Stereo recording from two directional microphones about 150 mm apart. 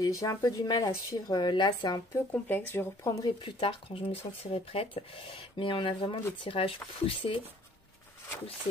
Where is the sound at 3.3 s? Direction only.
35° left (ahead or behind).